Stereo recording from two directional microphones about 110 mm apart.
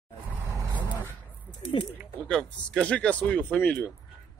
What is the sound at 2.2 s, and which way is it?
Speech, 10° left (ahead or behind).